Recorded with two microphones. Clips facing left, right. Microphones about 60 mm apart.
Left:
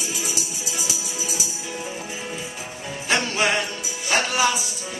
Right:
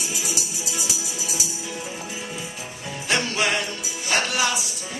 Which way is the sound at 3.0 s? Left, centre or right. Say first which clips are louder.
Left 1 dB; centre.